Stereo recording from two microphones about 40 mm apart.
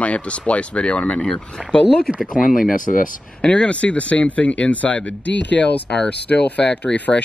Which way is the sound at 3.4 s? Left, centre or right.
Left.